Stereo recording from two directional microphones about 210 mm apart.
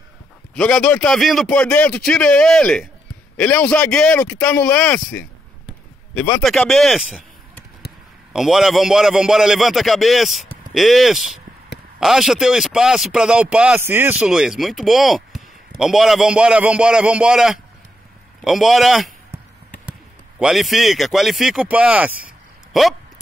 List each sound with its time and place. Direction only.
0.6 s a man's voice: 5° left (ahead or behind)
8.3 s a man's voice: centre (ahead or behind)